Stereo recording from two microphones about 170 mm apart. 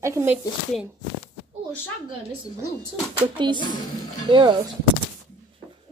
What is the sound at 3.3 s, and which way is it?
Speech, 25° right (ahead or behind).